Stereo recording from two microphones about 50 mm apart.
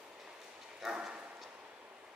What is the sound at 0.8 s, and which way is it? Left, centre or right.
Bow-wow, centre.